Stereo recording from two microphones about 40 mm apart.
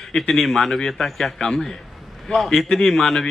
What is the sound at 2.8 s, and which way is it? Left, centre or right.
Speech, centre.